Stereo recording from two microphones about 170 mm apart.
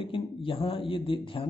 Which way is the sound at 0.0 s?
30° left (ahead or behind).